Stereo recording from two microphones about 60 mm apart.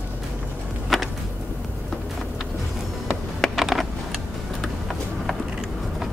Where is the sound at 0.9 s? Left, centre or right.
Centre.